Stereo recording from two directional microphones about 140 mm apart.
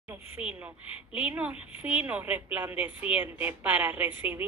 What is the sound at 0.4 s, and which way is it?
Speech, 10° right (ahead or behind).